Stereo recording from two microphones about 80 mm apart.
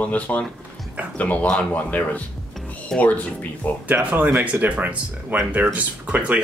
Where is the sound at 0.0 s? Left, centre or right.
Centre.